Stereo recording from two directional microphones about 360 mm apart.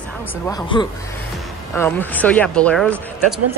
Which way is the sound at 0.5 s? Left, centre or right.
Centre.